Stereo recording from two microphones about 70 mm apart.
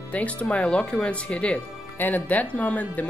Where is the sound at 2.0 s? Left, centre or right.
Left.